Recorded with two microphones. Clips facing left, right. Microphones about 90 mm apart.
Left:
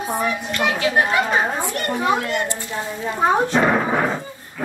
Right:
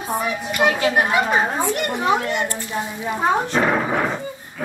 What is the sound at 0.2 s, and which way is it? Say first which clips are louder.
A woman's voice: right 3 dB; 10° right (ahead or behind).